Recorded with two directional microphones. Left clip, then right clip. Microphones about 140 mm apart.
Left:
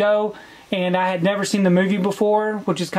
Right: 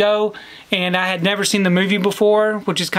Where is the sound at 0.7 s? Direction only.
30° right (ahead or behind).